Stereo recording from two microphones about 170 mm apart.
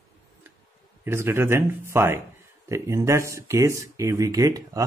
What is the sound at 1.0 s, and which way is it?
Speech, 15° right (ahead or behind).